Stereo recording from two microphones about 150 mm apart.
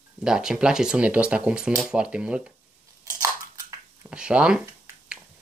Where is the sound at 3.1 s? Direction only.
20° right (ahead or behind).